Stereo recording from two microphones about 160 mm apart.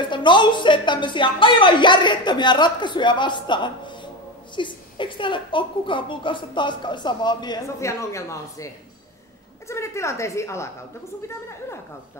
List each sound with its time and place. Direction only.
0.1 s a woman's voice: 30° left (ahead or behind)
9.7 s a woman's voice: 15° left (ahead or behind)